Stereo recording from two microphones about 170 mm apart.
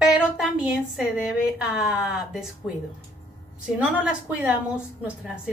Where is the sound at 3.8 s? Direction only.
5° right (ahead or behind).